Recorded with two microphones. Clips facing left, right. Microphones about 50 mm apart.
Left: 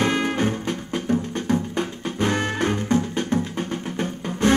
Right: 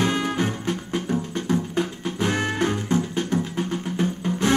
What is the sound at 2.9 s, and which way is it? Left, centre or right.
Music, left.